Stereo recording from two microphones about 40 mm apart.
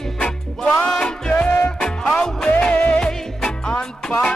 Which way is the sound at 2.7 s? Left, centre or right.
Left.